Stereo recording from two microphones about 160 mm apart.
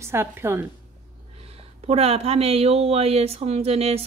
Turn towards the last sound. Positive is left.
turn(degrees=-40)  # may be behind; listen again after turning